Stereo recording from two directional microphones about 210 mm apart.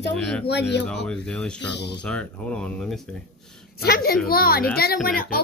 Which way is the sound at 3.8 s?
45° left (ahead or behind).